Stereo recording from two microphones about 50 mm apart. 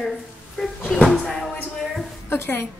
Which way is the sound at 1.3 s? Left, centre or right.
Centre.